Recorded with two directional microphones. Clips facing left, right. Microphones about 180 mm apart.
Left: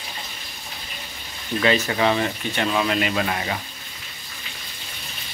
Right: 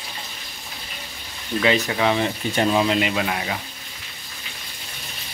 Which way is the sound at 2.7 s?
25° right (ahead or behind).